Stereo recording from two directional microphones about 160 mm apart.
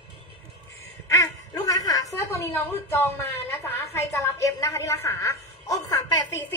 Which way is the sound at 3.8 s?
15° left (ahead or behind).